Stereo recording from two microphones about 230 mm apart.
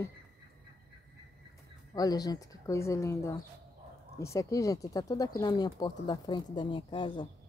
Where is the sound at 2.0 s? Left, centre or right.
Centre.